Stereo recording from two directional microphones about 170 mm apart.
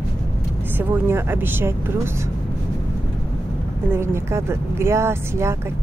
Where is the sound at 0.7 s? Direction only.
10° right (ahead or behind).